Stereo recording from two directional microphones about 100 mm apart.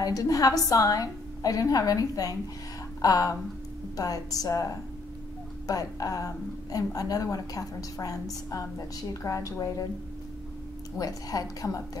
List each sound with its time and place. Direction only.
0.0 s a woman's voice: 35° left (ahead or behind)
5.7 s a woman's voice: 35° left (ahead or behind)
11.0 s a woman's voice: 35° left (ahead or behind)